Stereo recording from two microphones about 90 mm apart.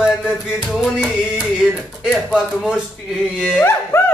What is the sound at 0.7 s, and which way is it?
Music, 5° right (ahead or behind).